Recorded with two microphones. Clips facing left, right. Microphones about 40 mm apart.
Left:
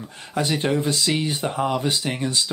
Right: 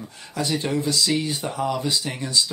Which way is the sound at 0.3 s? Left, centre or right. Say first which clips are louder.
Left 3 dB; left.